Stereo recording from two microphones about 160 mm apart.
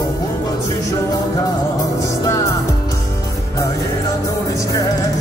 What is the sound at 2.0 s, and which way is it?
Music, 20° left (ahead or behind).